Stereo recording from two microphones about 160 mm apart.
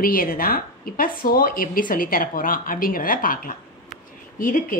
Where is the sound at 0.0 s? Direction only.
60° left (ahead or behind).